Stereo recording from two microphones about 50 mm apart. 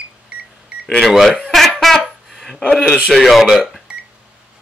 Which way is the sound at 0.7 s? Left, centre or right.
Centre.